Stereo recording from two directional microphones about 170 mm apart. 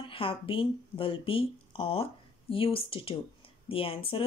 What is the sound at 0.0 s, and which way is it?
A woman's voice, 30° left (ahead or behind).